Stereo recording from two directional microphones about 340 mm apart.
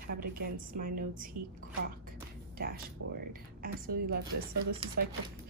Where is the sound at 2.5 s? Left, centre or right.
Right.